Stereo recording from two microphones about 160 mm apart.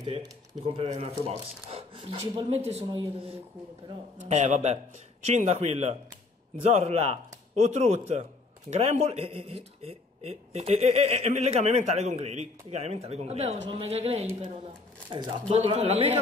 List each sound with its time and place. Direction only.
0.0 s speech: 25° right (ahead or behind)
0.7 s speech: 40° right (ahead or behind)
4.2 s a man's voice: 50° right (ahead or behind)